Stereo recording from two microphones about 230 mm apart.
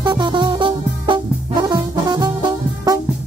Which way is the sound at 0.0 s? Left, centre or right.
Centre.